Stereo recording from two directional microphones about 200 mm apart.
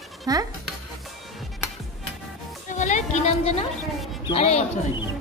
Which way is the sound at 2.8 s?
35° left (ahead or behind).